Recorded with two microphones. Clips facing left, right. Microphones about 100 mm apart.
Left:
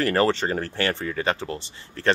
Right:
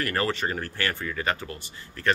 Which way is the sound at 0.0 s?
30° left (ahead or behind).